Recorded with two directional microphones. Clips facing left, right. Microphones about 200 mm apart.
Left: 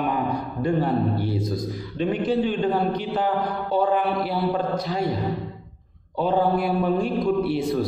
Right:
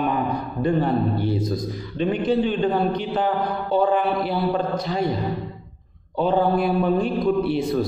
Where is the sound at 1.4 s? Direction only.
15° right (ahead or behind).